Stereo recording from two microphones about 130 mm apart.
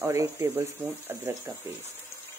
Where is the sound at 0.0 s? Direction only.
25° right (ahead or behind).